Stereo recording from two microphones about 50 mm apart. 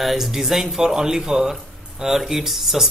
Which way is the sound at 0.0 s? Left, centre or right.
Centre.